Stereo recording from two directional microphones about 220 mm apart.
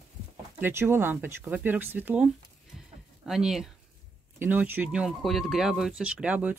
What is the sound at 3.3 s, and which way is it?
Speech, centre (ahead or behind).